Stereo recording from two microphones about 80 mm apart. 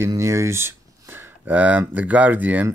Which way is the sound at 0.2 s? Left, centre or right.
Right.